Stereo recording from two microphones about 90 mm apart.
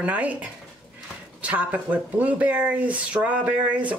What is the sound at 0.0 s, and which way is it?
Speech, 15° right (ahead or behind).